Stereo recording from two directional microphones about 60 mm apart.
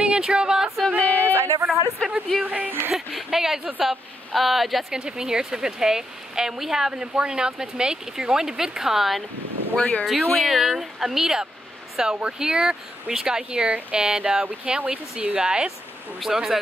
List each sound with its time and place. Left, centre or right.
0.0 s a sound: centre
1.1 s a sound: right
2.0 s speech: centre
2.4 s speech: right
2.9 s speech: centre
9.8 s speech: left
10.0 s speech: centre